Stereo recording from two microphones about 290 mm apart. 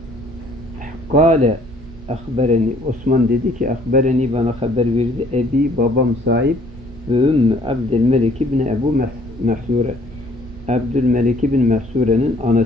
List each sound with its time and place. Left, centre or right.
1.1 s speech: right
7.1 s speech: centre
10.7 s speech: right